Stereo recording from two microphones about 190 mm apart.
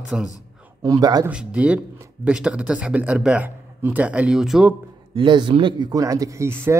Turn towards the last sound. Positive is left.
turn(degrees=-15)  # may be behind; listen again after turning